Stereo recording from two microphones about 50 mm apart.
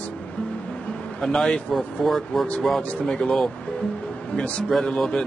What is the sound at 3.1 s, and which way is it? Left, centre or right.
Speech, centre.